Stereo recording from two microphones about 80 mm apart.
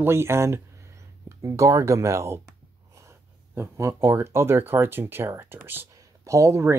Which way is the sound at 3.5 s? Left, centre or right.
Right.